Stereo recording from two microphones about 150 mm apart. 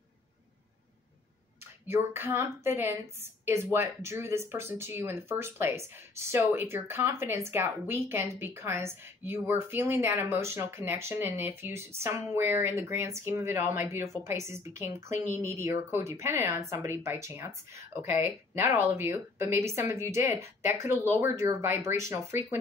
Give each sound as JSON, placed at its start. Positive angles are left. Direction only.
{"t": 1.9, "sound": "speech", "side_deg": -15}